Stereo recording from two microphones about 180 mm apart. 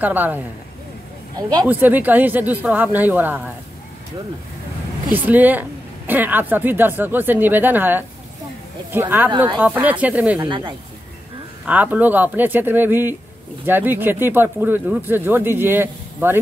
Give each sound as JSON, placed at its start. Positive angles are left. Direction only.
{"t": 0.0, "sound": "a woman's voice", "side_deg": -10}
{"t": 1.7, "sound": "a woman's voice", "side_deg": -10}
{"t": 5.1, "sound": "a woman's voice", "side_deg": -10}
{"t": 10.4, "sound": "speech", "side_deg": -25}
{"t": 11.6, "sound": "a woman's voice", "side_deg": -10}